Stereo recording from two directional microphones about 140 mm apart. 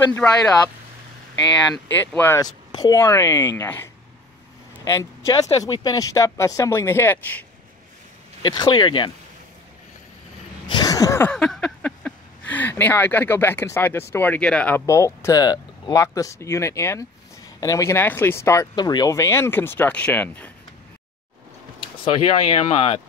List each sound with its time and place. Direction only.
0.2 s speech: 5° left (ahead or behind)
2.1 s speech: 15° left (ahead or behind)
2.4 s speech: 25° left (ahead or behind)
8.4 s speech: 30° left (ahead or behind)
10.7 s a sound: 25° left (ahead or behind)
11.2 s speech: 5° left (ahead or behind)
14.9 s speech: 20° left (ahead or behind)
18.8 s speech: 30° left (ahead or behind); by 20.5 s 10° left (ahead or behind)
22.0 s speech: 45° left (ahead or behind)